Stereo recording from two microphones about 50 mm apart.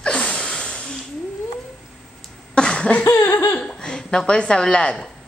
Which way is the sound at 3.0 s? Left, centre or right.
Left.